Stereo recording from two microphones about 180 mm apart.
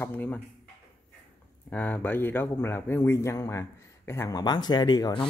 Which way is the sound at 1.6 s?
10° left (ahead or behind).